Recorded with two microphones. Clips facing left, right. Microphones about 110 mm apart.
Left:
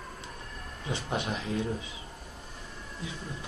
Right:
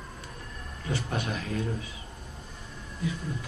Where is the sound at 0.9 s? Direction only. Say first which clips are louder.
Right 1 dB; 20° left (ahead or behind).